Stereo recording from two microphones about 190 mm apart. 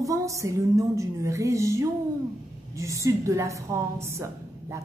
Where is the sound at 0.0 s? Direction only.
15° right (ahead or behind).